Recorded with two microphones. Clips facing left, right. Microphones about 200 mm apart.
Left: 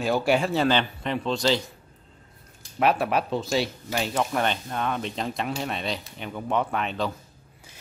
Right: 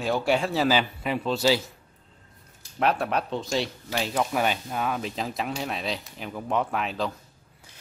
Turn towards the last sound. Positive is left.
turn(degrees=0)  # may be behind; listen again after turning